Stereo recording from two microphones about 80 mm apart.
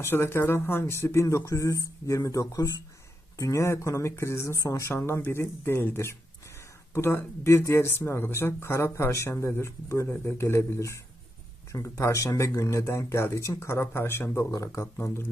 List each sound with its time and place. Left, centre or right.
0.0 s speech: left
14.5 s speech: left
15.0 s speech: left